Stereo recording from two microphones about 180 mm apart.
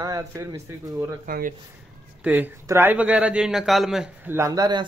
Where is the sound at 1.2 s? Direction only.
50° right (ahead or behind).